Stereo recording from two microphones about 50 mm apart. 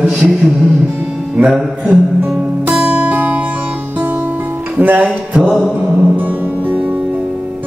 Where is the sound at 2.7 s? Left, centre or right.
Right.